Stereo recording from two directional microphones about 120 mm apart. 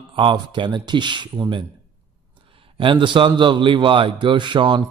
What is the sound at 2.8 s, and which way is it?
Speech, 45° right (ahead or behind).